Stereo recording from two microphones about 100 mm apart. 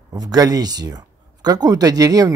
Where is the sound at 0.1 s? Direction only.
40° right (ahead or behind).